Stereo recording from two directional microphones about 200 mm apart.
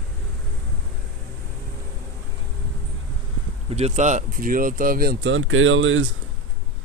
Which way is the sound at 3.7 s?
35° right (ahead or behind).